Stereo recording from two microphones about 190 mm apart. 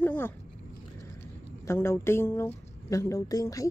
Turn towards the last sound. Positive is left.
turn(degrees=15)  # may be behind; listen again after turning